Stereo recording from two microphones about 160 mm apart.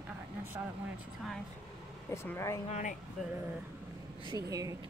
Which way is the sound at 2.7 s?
55° left (ahead or behind).